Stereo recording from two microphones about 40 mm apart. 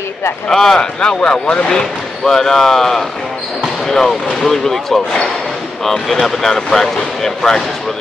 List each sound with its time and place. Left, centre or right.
0.5 s speech: centre